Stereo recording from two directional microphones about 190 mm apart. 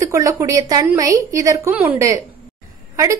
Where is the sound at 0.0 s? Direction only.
15° right (ahead or behind).